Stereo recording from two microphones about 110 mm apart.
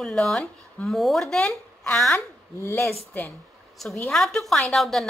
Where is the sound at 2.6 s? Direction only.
25° left (ahead or behind).